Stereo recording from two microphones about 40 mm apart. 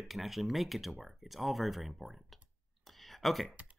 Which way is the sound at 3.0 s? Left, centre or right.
Centre.